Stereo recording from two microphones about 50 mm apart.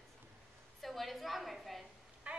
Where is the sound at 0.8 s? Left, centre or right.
Centre.